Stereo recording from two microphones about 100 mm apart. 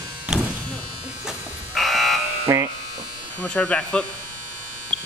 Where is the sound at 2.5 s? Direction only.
30° right (ahead or behind).